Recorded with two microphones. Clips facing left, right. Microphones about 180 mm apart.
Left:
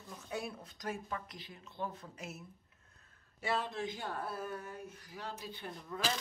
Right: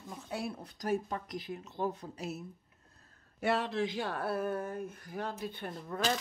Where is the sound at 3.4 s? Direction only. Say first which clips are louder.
Right 6 dB; 70° right (ahead or behind).